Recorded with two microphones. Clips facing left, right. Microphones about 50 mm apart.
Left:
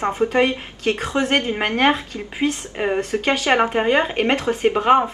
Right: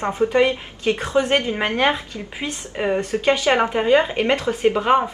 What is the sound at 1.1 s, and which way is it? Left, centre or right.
Speech, left.